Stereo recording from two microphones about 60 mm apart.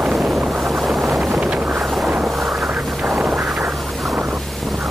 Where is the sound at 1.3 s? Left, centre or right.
Right.